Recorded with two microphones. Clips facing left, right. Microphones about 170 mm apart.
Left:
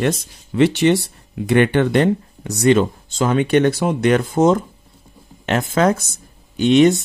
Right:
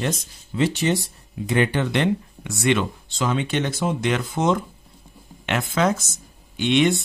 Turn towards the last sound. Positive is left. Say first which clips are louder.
# left 7 dB
turn(degrees=40)  # may be behind; listen again after turning